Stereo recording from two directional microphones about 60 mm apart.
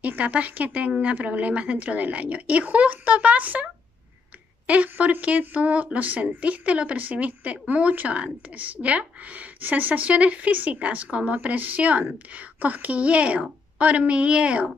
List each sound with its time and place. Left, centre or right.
0.0 s speech: right
4.6 s speech: right